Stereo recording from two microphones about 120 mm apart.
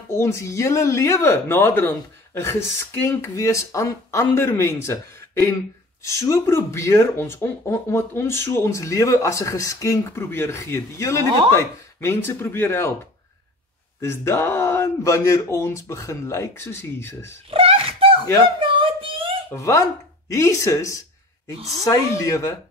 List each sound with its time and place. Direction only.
0.1 s speech: 20° left (ahead or behind)
14.0 s speech: 20° left (ahead or behind)
17.5 s a sound: 50° right (ahead or behind)
19.5 s speech: 25° left (ahead or behind)